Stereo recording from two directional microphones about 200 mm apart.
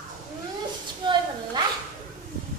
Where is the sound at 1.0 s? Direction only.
25° right (ahead or behind).